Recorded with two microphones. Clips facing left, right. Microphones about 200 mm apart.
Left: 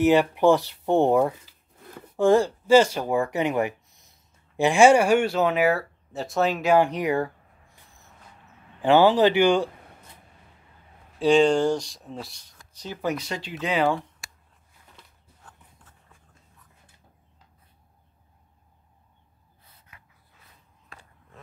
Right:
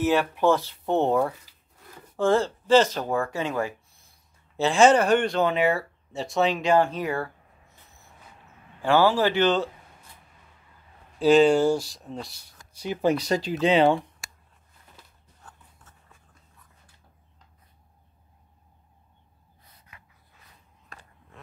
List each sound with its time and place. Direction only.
0.0 s speech: 15° left (ahead or behind)
11.1 s speech: centre (ahead or behind)
12.7 s speech: 10° right (ahead or behind)
13.0 s speech: 35° right (ahead or behind)
13.7 s speech: 25° right (ahead or behind)